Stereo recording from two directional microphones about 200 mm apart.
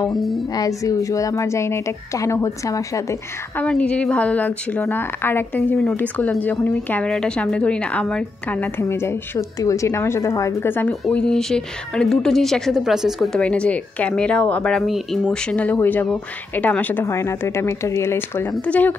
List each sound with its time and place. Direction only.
0.6 s a woman's voice: 15° left (ahead or behind)
3.6 s a woman's voice: 5° left (ahead or behind)